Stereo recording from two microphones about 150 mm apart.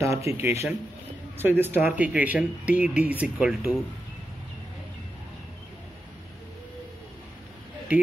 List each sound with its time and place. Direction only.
0.0 s speech: 20° right (ahead or behind)